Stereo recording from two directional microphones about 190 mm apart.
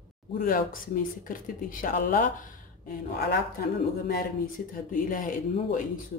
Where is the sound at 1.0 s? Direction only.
45° left (ahead or behind).